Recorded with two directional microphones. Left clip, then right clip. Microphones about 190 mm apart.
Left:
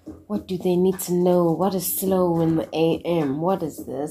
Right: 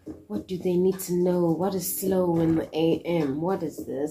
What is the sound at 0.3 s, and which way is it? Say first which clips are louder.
Speech: left 4 dB; 40° left (ahead or behind).